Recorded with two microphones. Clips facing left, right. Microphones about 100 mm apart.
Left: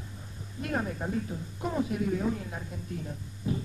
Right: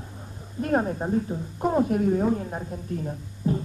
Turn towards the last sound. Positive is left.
turn(degrees=-40)  # may be behind; listen again after turning